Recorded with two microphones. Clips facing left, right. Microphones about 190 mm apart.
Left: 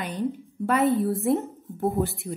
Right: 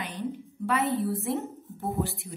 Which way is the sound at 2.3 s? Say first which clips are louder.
Left 8 dB; 55° left (ahead or behind).